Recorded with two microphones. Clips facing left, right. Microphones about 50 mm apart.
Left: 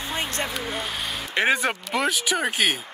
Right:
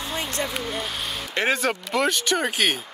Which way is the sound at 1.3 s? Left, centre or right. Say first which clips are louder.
Left 1 dB; centre.